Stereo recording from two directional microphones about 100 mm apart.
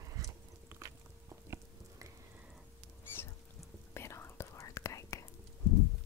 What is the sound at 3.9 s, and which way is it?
Whispering, 25° left (ahead or behind).